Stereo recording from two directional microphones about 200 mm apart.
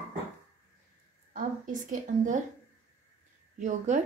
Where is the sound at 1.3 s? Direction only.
40° right (ahead or behind).